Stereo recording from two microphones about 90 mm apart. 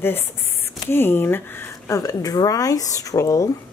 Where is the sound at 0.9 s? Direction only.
25° left (ahead or behind).